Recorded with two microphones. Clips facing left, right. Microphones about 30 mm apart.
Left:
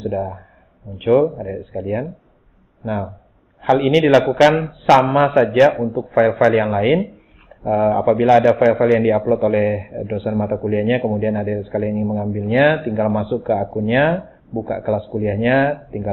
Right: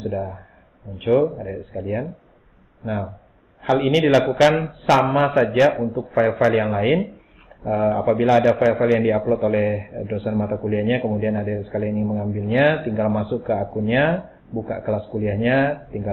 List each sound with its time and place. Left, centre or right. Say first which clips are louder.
0.0 s a man's voice: left 4 dB; centre